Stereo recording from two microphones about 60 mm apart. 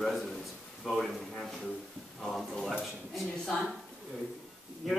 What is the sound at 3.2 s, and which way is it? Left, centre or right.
Speech, centre.